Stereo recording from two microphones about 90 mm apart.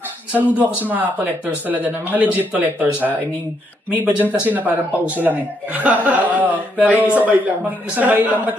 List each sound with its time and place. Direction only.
0.8 s a man's voice: 20° right (ahead or behind)